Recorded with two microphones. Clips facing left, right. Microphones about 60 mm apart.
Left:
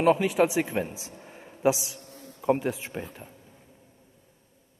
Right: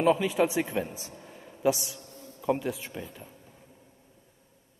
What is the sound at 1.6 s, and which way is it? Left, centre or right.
Speech, centre.